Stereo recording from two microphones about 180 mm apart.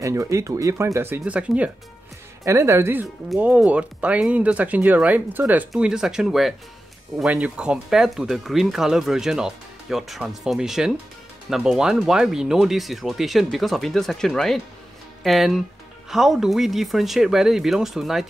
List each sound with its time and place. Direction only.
0.0 s speech: 15° right (ahead or behind); by 18.2 s centre (ahead or behind)